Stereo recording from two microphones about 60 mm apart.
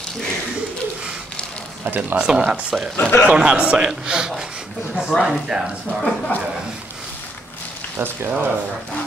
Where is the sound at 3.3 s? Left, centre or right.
Centre.